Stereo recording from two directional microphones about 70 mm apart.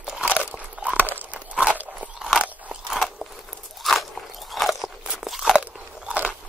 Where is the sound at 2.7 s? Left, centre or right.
Centre.